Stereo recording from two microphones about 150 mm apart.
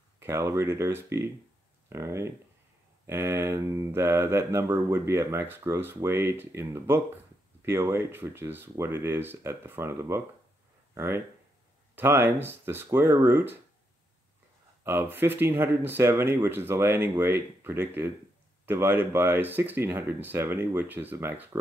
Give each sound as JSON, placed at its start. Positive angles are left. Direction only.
{"t": 0.2, "sound": "speech", "side_deg": -20}
{"t": 14.8, "sound": "speech", "side_deg": -15}